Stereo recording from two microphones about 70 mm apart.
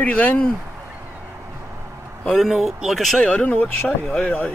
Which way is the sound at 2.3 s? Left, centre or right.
Centre.